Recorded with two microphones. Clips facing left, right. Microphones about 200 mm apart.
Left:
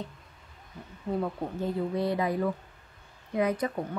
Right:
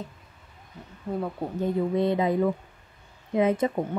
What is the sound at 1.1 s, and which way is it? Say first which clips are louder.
Speech: right 1 dB; 5° right (ahead or behind).